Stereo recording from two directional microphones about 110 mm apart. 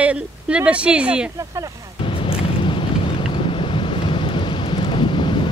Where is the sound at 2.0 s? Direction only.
55° left (ahead or behind).